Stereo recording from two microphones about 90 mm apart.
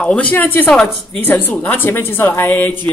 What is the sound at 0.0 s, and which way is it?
Speech, 15° left (ahead or behind).